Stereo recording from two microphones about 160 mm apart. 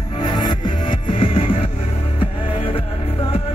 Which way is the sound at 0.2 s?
25° left (ahead or behind).